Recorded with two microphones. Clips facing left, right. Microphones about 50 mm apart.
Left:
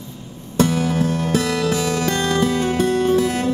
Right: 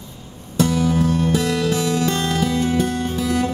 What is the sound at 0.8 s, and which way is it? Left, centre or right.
Music, left.